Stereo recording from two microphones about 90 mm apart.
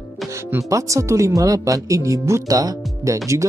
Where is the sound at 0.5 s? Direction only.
35° right (ahead or behind).